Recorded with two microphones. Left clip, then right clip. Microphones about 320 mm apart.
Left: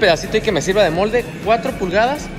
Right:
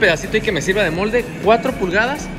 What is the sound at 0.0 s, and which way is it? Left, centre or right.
Speech, centre.